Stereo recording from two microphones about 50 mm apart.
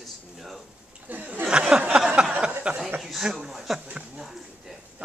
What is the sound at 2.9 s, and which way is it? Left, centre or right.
Speech, centre.